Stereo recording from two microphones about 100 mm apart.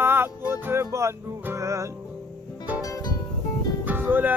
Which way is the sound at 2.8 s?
30° left (ahead or behind).